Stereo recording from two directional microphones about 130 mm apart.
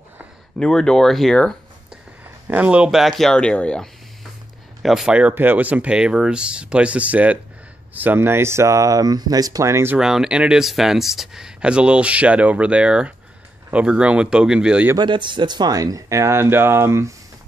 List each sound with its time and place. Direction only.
0.6 s speech: 5° left (ahead or behind)
2.4 s speech: 10° right (ahead or behind)
9.9 s speech: 5° right (ahead or behind)
15.0 s speech: 35° right (ahead or behind); by 17.1 s 20° right (ahead or behind)